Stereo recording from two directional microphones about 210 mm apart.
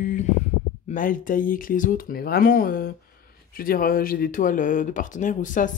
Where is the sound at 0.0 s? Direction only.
40° left (ahead or behind).